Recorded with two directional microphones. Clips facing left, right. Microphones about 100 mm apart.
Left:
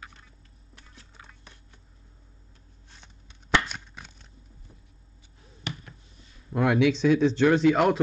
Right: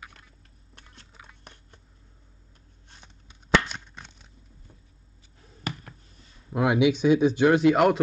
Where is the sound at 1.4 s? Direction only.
55° right (ahead or behind).